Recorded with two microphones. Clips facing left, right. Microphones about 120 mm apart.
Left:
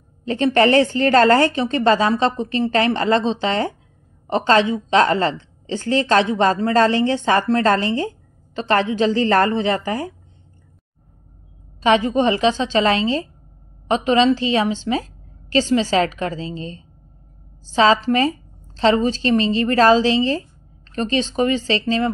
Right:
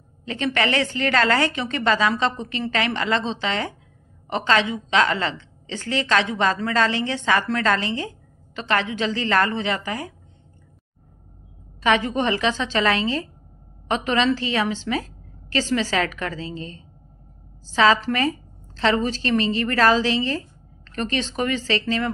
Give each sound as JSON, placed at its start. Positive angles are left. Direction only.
{"t": 0.2, "sound": "a woman's voice", "side_deg": 35}
{"t": 11.8, "sound": "a woman's voice", "side_deg": 25}